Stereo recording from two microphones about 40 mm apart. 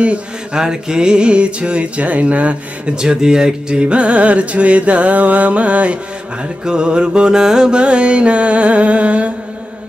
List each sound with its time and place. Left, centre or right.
0.0 s speech: right
0.6 s music: centre; by 2.5 s right
3.0 s music: centre
6.6 s mantra: right
7.8 s music: right